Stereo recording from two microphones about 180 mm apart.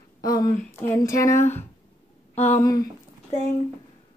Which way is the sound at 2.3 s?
35° left (ahead or behind).